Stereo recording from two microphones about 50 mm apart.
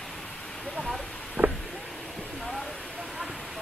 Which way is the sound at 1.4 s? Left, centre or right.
Right.